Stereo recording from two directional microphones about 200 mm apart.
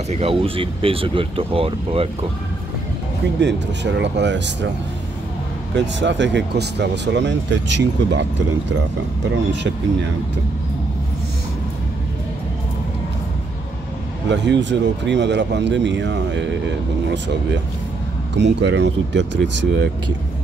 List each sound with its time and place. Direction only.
0.1 s speech: 30° right (ahead or behind)
3.3 s speech: 60° right (ahead or behind)
5.8 s speech: 65° right (ahead or behind)
14.3 s speech: 60° right (ahead or behind)
18.3 s speech: 60° right (ahead or behind)